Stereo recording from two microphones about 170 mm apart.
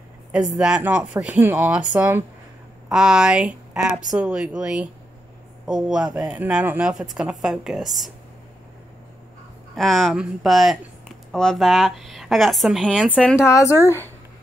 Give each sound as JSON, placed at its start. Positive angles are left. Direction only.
{"t": 0.6, "sound": "speech", "side_deg": -5}
{"t": 9.8, "sound": "speech", "side_deg": 0}
{"t": 13.5, "sound": "speech", "side_deg": 20}